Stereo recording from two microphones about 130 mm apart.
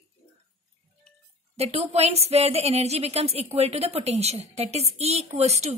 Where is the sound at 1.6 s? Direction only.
55° right (ahead or behind).